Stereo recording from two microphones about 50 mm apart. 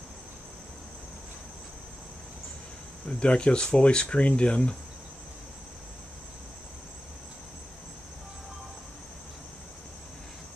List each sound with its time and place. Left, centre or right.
3.1 s speech: left